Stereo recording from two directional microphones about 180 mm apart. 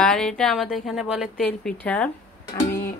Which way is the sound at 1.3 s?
5° left (ahead or behind).